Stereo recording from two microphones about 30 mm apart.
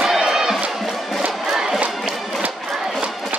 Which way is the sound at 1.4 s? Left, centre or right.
Centre.